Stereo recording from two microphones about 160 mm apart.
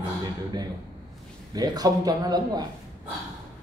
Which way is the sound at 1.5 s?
25° right (ahead or behind).